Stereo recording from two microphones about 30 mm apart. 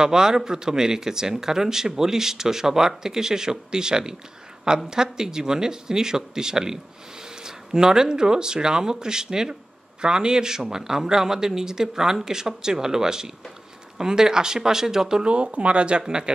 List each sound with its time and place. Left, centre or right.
0.0 s speech: right
15.2 s speech: right
16.1 s speech: right